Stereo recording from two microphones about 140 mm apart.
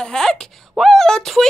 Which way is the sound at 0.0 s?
5° left (ahead or behind).